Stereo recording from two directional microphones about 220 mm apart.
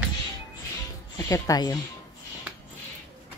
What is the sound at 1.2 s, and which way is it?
Speech, 15° left (ahead or behind).